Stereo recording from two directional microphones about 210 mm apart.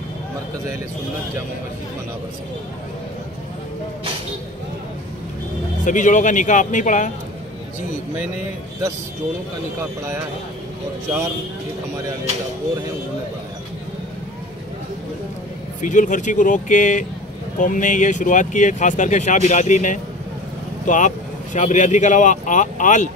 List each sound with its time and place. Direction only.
5.9 s speech: 35° left (ahead or behind)
15.8 s speech: 35° left (ahead or behind)